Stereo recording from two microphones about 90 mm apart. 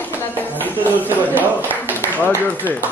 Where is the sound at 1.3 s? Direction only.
20° right (ahead or behind).